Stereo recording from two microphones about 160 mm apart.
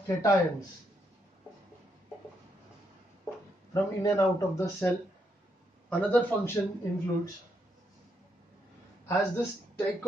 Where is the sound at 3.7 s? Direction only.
20° left (ahead or behind).